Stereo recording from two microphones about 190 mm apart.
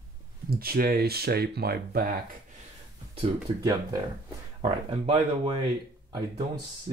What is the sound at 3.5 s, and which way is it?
Speech, 25° right (ahead or behind).